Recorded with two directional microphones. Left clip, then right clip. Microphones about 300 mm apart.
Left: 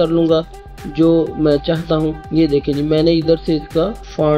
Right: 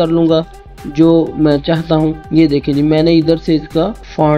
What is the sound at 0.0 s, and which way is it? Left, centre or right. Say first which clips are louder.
Speech: right 2 dB; right.